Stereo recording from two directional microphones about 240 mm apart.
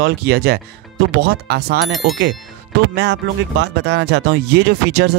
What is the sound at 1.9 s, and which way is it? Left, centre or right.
Speech, centre.